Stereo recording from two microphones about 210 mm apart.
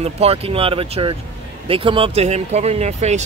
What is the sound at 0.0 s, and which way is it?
Speech, 30° right (ahead or behind).